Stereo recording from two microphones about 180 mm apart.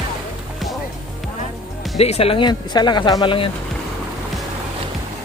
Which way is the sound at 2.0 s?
35° left (ahead or behind).